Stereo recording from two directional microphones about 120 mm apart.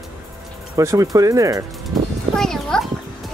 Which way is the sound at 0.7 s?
30° right (ahead or behind).